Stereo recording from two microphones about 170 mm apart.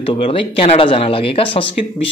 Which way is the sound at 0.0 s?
35° left (ahead or behind).